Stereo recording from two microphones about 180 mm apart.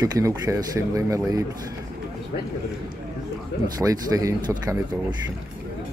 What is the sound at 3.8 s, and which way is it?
Speech, 20° right (ahead or behind).